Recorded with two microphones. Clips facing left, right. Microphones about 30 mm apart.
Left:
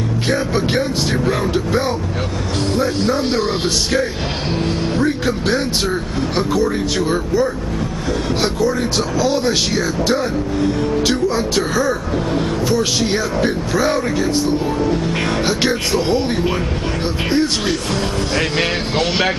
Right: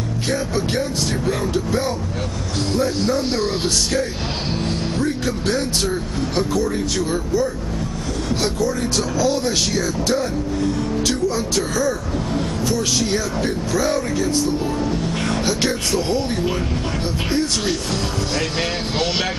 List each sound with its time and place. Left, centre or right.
0.3 s speech: left